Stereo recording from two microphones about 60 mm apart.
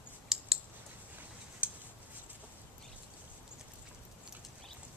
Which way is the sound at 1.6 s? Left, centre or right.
Right.